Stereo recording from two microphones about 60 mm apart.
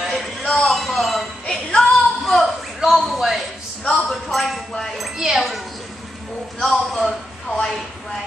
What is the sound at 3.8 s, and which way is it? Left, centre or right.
Wind chime, centre.